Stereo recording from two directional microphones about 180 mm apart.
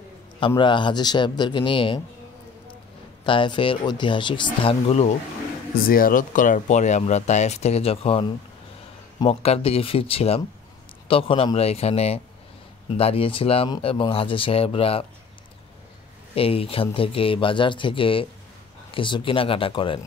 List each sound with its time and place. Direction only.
0.6 s speech: 25° left (ahead or behind)
3.3 s speech: 25° left (ahead or behind)
5.9 s speech: 50° left (ahead or behind); by 15.0 s 30° left (ahead or behind)
16.3 s speech: 30° left (ahead or behind)